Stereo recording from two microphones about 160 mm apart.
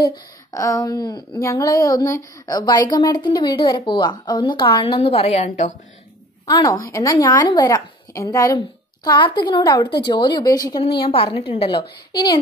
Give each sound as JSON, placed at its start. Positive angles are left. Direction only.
{"t": 0.0, "sound": "speech", "side_deg": 25}
{"t": 6.4, "sound": "a woman's voice", "side_deg": 20}